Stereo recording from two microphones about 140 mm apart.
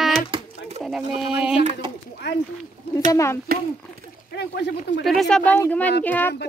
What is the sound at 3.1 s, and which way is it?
Speech, 20° left (ahead or behind).